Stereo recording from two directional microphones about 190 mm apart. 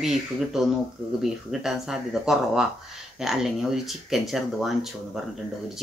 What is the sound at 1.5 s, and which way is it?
Speech, centre (ahead or behind).